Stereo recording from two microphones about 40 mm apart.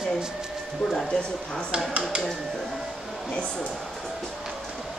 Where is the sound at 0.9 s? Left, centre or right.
Centre.